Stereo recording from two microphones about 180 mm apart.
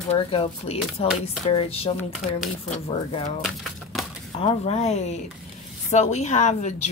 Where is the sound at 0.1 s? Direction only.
30° left (ahead or behind).